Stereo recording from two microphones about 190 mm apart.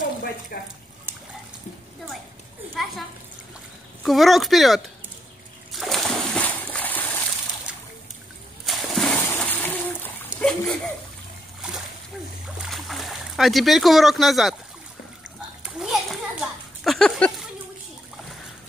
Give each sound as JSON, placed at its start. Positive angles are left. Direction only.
{"t": 0.5, "sound": "speech", "side_deg": 50}
{"t": 4.0, "sound": "speech", "side_deg": 0}
{"t": 5.7, "sound": "splash", "side_deg": 0}
{"t": 8.6, "sound": "splash", "side_deg": 0}
{"t": 12.6, "sound": "a sound", "side_deg": 0}
{"t": 15.6, "sound": "children playing", "side_deg": 0}